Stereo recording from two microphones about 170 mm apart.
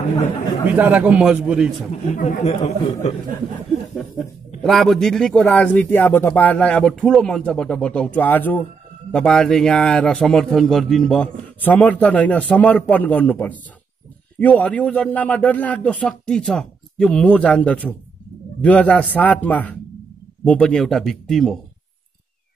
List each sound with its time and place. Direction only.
0.7 s a man's voice: 10° right (ahead or behind)
2.1 s speech: 55° left (ahead or behind)
2.4 s speech: 40° left (ahead or behind)
4.6 s a man's voice: centre (ahead or behind)